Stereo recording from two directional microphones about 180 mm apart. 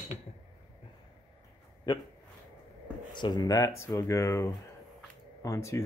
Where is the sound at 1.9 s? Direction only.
25° left (ahead or behind).